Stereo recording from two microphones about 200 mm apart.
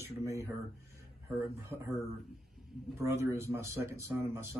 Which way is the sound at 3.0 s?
15° right (ahead or behind).